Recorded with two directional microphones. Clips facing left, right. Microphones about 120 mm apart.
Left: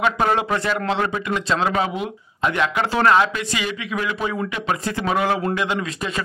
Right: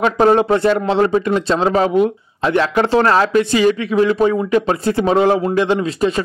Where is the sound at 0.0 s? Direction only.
35° right (ahead or behind).